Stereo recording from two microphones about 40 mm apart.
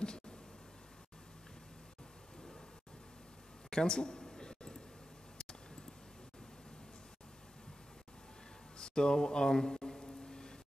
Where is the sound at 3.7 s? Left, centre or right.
Centre.